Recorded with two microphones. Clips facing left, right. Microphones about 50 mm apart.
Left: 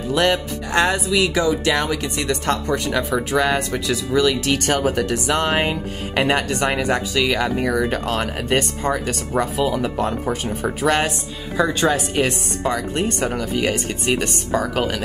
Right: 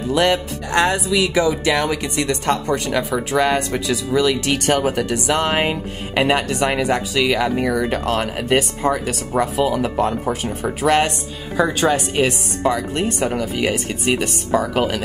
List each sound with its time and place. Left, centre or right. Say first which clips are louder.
0.1 s speech: right 1 dB; centre
1.1 s speech: right 1 dB; centre